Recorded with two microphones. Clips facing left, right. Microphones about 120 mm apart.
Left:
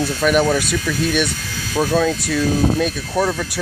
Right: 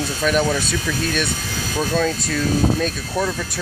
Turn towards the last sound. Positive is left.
turn(degrees=5)  # may be behind; listen again after turning